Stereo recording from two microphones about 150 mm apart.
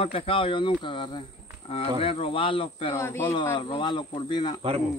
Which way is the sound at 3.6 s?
35° left (ahead or behind).